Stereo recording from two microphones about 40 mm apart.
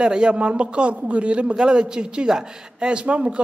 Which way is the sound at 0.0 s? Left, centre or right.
Right.